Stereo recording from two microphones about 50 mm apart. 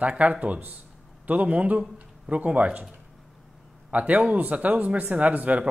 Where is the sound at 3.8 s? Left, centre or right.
Right.